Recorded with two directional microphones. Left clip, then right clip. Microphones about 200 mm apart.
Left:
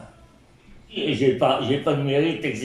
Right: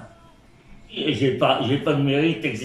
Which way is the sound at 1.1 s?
5° right (ahead or behind).